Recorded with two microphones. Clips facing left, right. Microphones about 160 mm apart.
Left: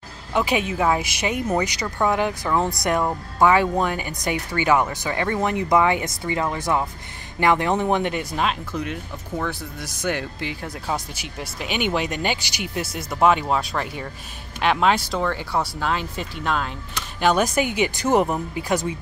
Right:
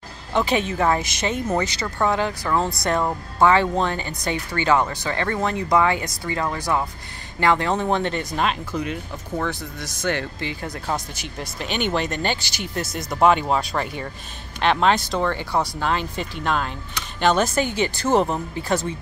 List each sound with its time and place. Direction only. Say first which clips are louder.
0.3 s speech: right 1 dB; 10° left (ahead or behind)